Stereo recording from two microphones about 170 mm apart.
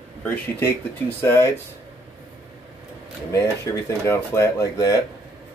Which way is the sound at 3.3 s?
15° left (ahead or behind).